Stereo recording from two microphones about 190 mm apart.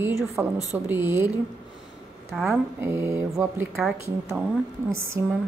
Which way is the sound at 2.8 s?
15° right (ahead or behind).